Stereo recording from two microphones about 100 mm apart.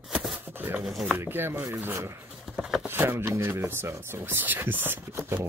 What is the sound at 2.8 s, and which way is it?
Speech, 20° right (ahead or behind).